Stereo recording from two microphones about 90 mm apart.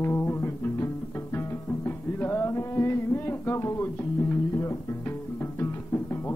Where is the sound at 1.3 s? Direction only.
25° left (ahead or behind).